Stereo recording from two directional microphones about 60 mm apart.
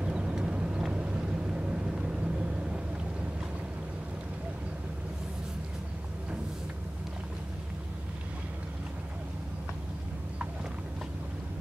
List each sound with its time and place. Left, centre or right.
0.0 s vehicle: centre